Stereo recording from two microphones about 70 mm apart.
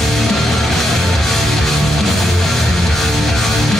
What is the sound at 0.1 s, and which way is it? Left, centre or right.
Music, centre.